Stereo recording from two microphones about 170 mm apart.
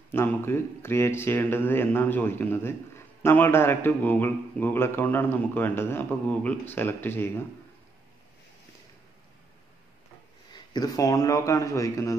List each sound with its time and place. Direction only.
0.1 s a man's voice: 15° left (ahead or behind)
10.5 s a man's voice: 25° left (ahead or behind)